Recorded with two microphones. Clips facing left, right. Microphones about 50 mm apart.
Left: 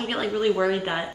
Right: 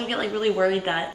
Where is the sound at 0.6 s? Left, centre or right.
Right.